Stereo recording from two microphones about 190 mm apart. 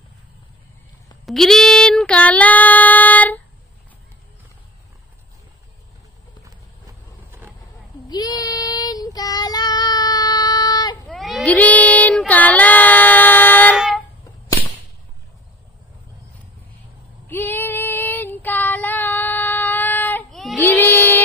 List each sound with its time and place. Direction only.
1.2 s child singing: centre (ahead or behind)
6.4 s walk: 15° right (ahead or behind)
8.1 s child singing: 20° left (ahead or behind)
11.1 s child singing: centre (ahead or behind)
13.7 s a sound: centre (ahead or behind)
17.3 s child singing: 10° left (ahead or behind)